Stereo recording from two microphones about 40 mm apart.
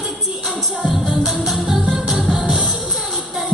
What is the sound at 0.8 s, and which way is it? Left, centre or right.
Music, centre.